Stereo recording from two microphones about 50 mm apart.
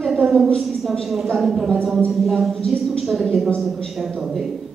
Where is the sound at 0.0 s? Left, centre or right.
Centre.